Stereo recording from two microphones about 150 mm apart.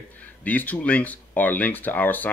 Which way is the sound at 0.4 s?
10° left (ahead or behind).